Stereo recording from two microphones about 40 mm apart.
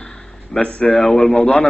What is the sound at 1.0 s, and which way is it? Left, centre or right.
Speech, centre.